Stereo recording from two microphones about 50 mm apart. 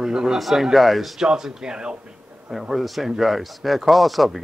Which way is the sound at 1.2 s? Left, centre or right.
Centre.